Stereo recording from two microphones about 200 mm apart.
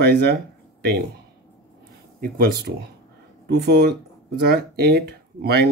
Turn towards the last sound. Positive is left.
turn(degrees=-55)  # may be behind; listen again after turning